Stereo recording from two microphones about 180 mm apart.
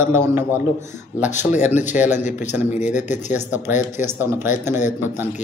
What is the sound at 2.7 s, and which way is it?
Speech, 40° left (ahead or behind).